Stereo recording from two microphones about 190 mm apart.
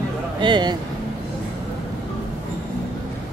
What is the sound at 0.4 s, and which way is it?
Speech, 25° right (ahead or behind).